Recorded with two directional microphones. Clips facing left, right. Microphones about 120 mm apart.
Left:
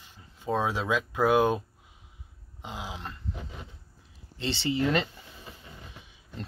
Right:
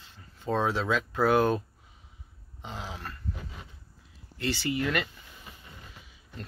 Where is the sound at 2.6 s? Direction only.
10° left (ahead or behind).